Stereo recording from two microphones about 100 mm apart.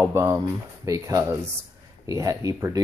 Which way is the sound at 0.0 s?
30° right (ahead or behind).